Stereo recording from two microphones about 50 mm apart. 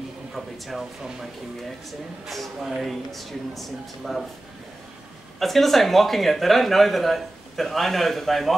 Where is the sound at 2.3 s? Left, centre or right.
Centre.